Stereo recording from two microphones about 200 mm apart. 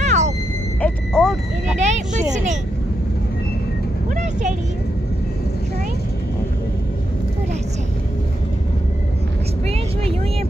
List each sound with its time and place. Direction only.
0.0 s music: 35° right (ahead or behind)
0.7 s a sound: 5° left (ahead or behind)
1.8 s vehicle: 35° right (ahead or behind)
4.1 s vehicle: 40° right (ahead or behind)